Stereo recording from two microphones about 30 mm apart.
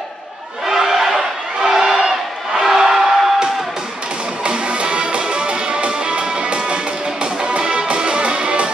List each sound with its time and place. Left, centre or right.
0.7 s crowd: centre
4.5 s music: right